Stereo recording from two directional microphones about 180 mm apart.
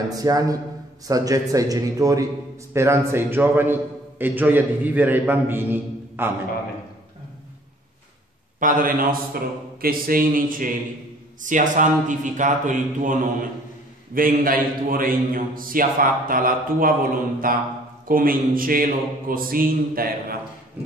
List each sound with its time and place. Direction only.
0.2 s a man's voice: 20° right (ahead or behind)
8.5 s a man's voice: 50° right (ahead or behind)